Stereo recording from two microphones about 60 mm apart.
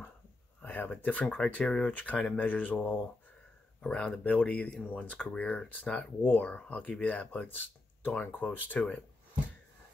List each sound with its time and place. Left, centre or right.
0.6 s speech: left
1.8 s speech: left